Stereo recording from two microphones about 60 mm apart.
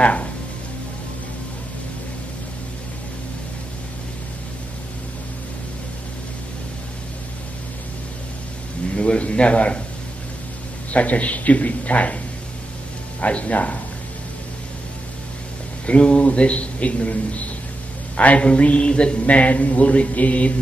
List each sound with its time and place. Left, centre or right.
0.0 s a man's voice: left
8.9 s a man's voice: centre
10.9 s a man's voice: left
13.2 s a man's voice: left
15.9 s a man's voice: centre